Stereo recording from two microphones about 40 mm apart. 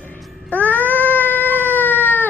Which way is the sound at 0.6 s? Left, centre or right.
Left.